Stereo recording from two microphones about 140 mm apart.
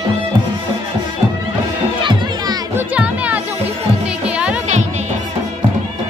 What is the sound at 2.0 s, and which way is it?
Music, 35° right (ahead or behind).